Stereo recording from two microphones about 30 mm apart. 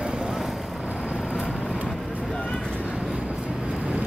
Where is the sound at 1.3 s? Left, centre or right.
Left.